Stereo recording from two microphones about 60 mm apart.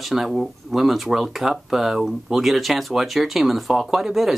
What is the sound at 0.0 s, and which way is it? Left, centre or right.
Speech, centre.